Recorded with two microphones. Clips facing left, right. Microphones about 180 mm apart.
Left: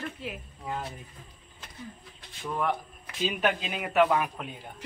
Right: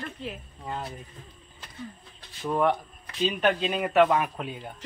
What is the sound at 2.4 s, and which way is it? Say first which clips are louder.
Speech: right 6 dB; 35° right (ahead or behind).